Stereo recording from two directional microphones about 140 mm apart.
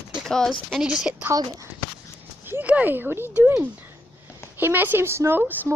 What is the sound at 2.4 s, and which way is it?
Speech, 15° right (ahead or behind).